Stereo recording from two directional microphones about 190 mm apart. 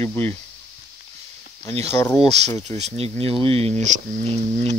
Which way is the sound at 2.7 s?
35° right (ahead or behind).